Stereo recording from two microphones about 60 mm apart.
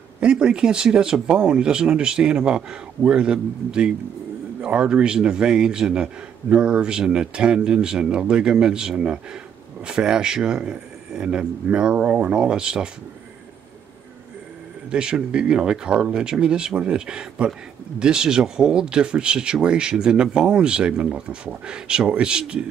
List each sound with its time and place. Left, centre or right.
0.2 s speech: centre
14.9 s speech: centre